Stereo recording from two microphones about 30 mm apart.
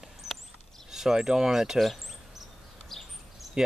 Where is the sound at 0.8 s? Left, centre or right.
Centre.